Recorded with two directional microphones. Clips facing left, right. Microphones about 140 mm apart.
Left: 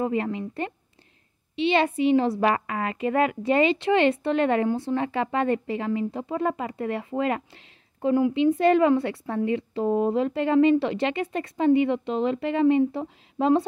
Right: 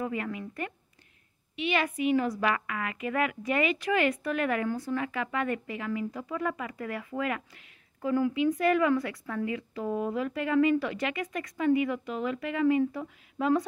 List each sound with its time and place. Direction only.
0.0 s a woman's voice: 30° left (ahead or behind)